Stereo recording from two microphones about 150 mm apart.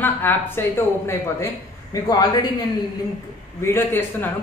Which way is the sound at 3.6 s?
15° left (ahead or behind).